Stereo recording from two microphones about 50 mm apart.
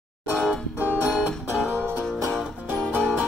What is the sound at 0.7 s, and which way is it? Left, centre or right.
Music, right.